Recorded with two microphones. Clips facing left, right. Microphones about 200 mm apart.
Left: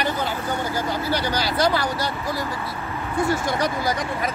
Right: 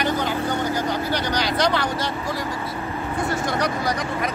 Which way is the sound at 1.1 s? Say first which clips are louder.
Even; 5° left (ahead or behind).